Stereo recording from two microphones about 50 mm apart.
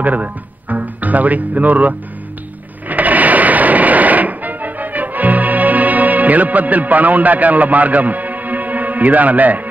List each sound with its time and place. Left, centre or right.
0.0 s speech: right
2.9 s music: right